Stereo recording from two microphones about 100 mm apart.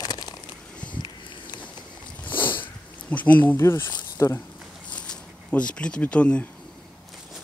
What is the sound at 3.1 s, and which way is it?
Speech, 15° left (ahead or behind).